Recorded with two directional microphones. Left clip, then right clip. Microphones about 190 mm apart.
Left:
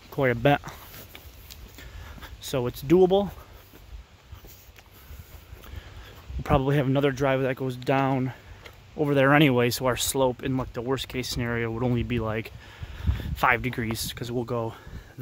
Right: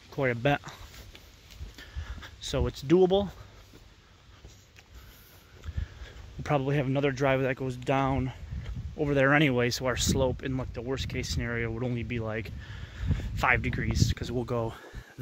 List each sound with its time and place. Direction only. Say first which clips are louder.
0.1 s speech: left 5 dB; 15° left (ahead or behind)
1.8 s a sound: even; 5° left (ahead or behind)
6.4 s speech: left 4 dB; 15° left (ahead or behind)
7.2 s speech: left 2 dB; centre (ahead or behind)
11.9 s speech: left 6 dB; 25° left (ahead or behind)
12.3 s speech: left 4 dB; 10° left (ahead or behind)